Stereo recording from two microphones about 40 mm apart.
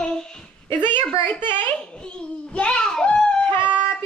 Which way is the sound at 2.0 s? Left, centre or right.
Left.